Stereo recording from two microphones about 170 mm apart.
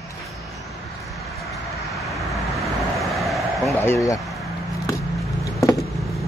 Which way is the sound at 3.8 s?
15° left (ahead or behind).